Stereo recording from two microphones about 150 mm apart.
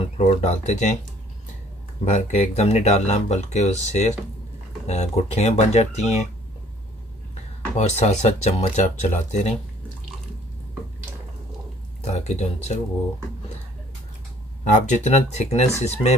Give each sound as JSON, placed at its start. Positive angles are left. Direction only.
{"t": 0.0, "sound": "speech", "side_deg": 45}
{"t": 2.0, "sound": "speech", "side_deg": 50}
{"t": 7.8, "sound": "speech", "side_deg": 50}
{"t": 12.0, "sound": "a sound", "side_deg": 45}
{"t": 14.6, "sound": "speech", "side_deg": 55}